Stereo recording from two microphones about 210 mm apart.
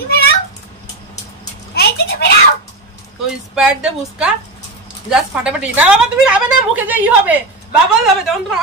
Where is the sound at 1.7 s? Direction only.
50° left (ahead or behind).